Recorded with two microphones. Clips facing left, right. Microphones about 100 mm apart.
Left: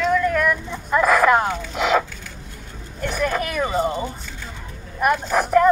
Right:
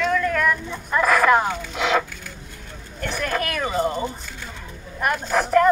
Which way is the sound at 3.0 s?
15° left (ahead or behind).